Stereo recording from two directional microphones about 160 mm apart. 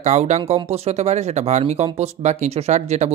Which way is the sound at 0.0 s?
45° right (ahead or behind).